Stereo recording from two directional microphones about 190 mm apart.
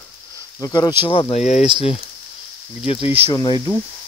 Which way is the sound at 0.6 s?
20° left (ahead or behind).